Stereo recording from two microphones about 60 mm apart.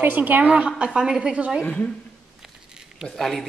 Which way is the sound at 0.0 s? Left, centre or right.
Right.